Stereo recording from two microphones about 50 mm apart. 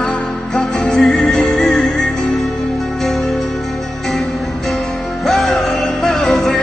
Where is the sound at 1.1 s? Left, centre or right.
Centre.